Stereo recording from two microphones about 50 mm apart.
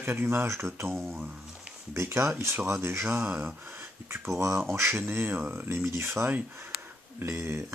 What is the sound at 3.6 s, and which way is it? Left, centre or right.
Speech, right.